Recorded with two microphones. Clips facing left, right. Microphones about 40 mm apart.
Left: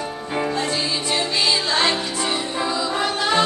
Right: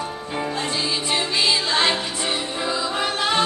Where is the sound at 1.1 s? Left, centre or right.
Centre.